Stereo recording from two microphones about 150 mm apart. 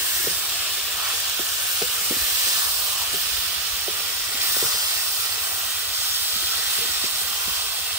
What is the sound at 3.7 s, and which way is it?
Steam, 10° right (ahead or behind).